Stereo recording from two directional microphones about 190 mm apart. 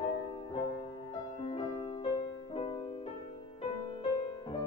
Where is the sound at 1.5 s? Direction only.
30° left (ahead or behind).